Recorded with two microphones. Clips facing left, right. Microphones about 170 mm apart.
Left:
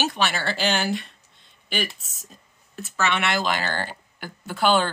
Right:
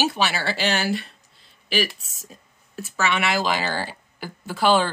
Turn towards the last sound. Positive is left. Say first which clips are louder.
# right 1 dB
turn(degrees=0)  # may be behind; listen again after turning